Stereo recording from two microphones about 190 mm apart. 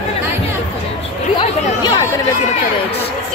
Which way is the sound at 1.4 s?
25° left (ahead or behind).